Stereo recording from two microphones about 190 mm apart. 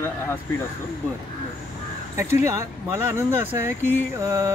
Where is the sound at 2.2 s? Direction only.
15° right (ahead or behind).